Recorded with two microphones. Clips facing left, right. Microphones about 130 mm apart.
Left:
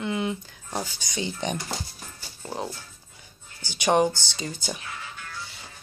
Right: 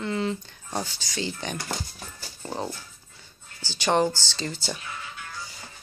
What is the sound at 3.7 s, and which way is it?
Speech, 15° left (ahead or behind).